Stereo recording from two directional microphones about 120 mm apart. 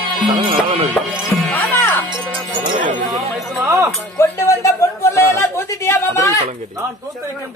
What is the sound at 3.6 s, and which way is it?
Music, 25° right (ahead or behind).